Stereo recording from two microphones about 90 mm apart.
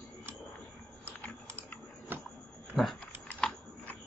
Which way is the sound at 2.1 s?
25° right (ahead or behind).